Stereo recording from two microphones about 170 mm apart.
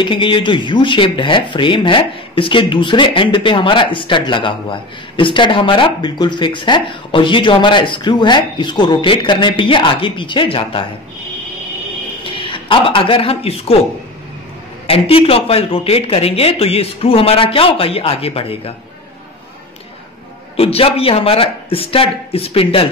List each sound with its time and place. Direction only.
0.0 s speech: 30° left (ahead or behind)
12.2 s a man's voice: 30° left (ahead or behind)
14.9 s speech: 35° left (ahead or behind)
20.5 s speech: 35° left (ahead or behind)